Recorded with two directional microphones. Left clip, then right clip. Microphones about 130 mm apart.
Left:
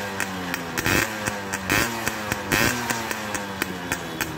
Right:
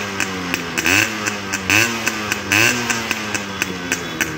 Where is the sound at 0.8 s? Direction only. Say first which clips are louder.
Right 7 dB; 15° right (ahead or behind).